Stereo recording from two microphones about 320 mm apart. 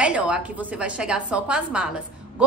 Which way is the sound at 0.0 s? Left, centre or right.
Centre.